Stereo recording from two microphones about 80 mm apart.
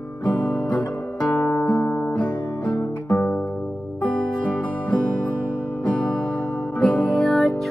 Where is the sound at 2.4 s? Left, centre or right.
Left.